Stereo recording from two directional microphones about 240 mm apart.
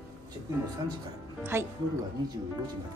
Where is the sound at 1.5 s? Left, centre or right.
Centre.